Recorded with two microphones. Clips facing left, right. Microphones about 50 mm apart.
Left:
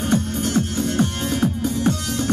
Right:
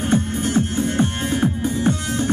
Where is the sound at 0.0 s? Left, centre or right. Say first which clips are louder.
Right 1 dB; right.